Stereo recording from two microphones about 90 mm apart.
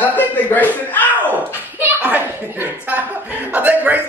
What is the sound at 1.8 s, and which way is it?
Speech, 20° right (ahead or behind).